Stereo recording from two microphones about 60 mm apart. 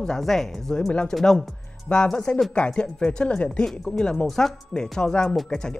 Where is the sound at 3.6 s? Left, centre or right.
Centre.